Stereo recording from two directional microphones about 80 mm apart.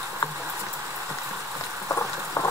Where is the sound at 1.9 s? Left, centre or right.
Left.